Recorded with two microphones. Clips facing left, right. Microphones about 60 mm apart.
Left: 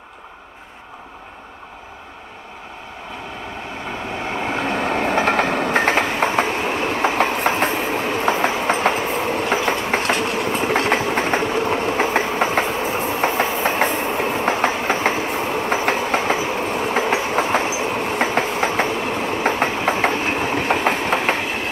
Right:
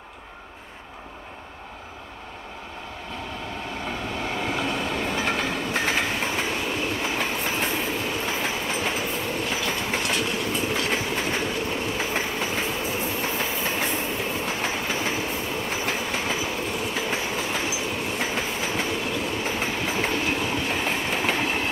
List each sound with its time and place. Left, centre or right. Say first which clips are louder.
4.2 s train: left 5 dB; left